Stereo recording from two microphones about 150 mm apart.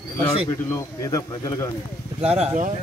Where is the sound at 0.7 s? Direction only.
20° left (ahead or behind).